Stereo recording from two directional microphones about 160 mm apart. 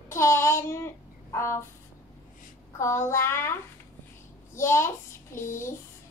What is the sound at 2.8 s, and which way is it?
Speech, 15° left (ahead or behind).